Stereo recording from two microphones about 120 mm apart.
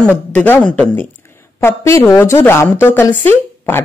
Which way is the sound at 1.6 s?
20° left (ahead or behind).